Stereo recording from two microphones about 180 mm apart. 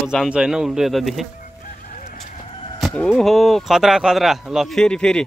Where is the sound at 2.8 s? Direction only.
Centre (ahead or behind).